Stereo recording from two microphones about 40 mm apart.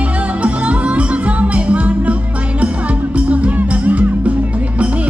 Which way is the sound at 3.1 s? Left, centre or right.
Right.